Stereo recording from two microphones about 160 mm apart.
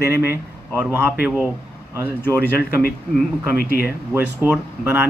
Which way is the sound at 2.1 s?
10° left (ahead or behind).